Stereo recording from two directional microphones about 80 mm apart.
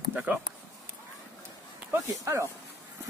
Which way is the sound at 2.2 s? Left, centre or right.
Right.